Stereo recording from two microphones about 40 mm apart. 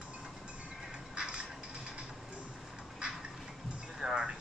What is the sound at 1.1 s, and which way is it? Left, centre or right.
Music, right.